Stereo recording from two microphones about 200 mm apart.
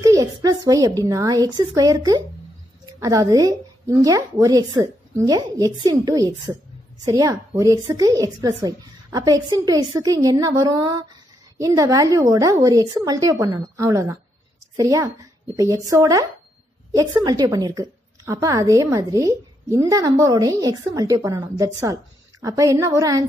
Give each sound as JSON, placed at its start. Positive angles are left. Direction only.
{"t": 0.0, "sound": "a woman's voice", "side_deg": -15}